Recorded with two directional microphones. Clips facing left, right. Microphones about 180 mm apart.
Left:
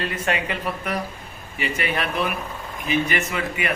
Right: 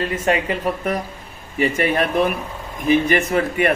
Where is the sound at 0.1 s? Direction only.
30° right (ahead or behind).